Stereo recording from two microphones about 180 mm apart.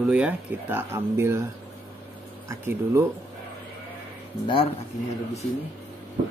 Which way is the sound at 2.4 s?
15° right (ahead or behind).